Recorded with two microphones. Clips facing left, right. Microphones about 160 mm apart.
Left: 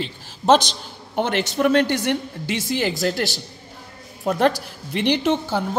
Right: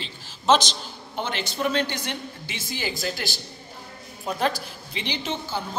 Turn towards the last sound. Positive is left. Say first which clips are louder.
# left 9 dB
turn(degrees=65)  # may be behind; listen again after turning